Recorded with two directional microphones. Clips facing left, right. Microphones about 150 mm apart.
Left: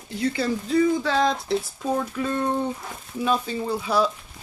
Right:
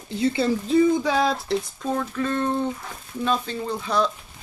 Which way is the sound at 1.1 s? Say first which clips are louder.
Even; 10° right (ahead or behind).